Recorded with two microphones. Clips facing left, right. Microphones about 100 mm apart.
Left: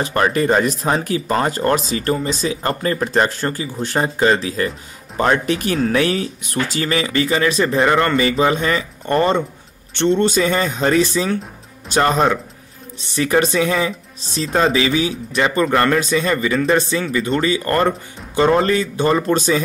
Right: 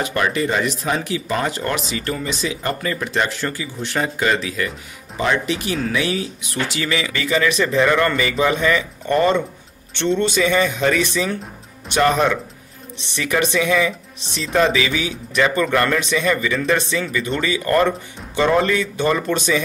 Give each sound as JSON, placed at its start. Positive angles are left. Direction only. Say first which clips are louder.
{"t": 0.0, "sound": "speech", "louder": "left 3 dB", "side_deg": 40}
{"t": 5.1, "sound": "speech", "louder": "left 3 dB", "side_deg": 45}